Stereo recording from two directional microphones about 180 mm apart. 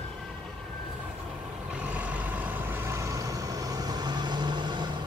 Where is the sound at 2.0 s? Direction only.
10° right (ahead or behind); by 4.8 s 25° right (ahead or behind).